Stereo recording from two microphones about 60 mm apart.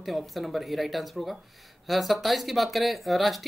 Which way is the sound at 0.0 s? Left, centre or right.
Centre.